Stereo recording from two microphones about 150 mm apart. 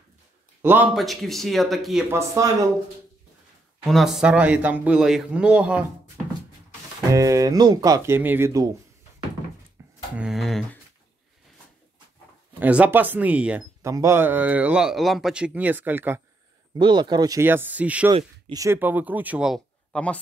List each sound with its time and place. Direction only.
0.6 s a man's voice: 15° right (ahead or behind)
0.9 s speech: centre (ahead or behind)
2.0 s speech: 20° right (ahead or behind)
3.8 s speech: centre (ahead or behind)
7.1 s speech: 20° right (ahead or behind)
9.8 s a sound: 20° right (ahead or behind)
10.1 s a sound: 5° right (ahead or behind)
12.5 s speech: 10° right (ahead or behind)
13.8 s speech: 20° right (ahead or behind)
16.7 s speech: 30° right (ahead or behind)
17.5 s speech: 10° right (ahead or behind)
18.1 s speech: 25° right (ahead or behind); by 20.2 s 5° left (ahead or behind)